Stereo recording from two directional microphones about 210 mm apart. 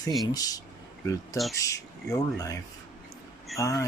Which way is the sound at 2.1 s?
15° left (ahead or behind).